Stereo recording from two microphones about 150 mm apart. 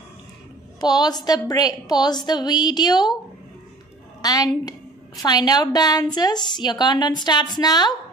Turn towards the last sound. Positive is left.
turn(degrees=30)  # may be behind; listen again after turning